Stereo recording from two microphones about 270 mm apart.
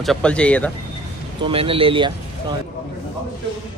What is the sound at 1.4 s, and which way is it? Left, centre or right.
Speech, centre.